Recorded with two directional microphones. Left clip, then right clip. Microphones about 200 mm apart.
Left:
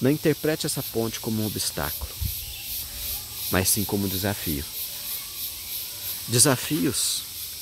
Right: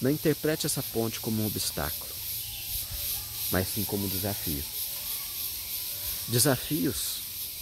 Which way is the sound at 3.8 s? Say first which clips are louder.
Left 5 dB; 35° left (ahead or behind).